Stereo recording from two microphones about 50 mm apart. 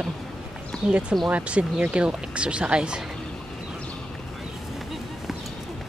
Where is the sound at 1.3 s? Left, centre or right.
Right.